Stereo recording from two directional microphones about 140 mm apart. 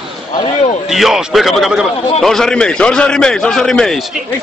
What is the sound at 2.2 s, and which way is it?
A man's voice, 5° left (ahead or behind).